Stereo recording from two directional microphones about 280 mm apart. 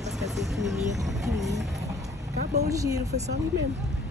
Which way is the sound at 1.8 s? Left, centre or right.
Centre.